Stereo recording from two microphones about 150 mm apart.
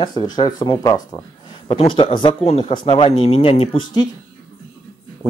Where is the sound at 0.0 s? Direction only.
30° left (ahead or behind).